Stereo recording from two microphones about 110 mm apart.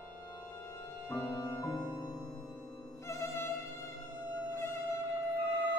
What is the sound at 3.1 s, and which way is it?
Violin, 25° left (ahead or behind).